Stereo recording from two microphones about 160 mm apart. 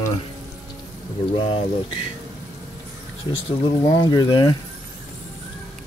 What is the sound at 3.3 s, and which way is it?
Speech, 25° left (ahead or behind).